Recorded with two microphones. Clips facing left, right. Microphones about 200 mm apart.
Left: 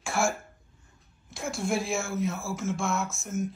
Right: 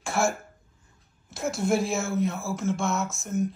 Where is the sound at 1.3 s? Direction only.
Centre (ahead or behind).